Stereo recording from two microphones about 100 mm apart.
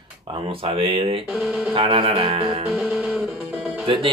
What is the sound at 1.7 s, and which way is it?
Speech, 65° right (ahead or behind).